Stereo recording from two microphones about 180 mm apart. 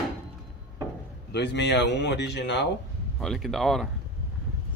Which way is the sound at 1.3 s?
75° left (ahead or behind).